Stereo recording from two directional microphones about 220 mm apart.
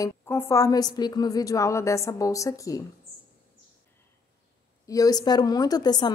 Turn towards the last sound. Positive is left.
turn(degrees=20)  # may be behind; listen again after turning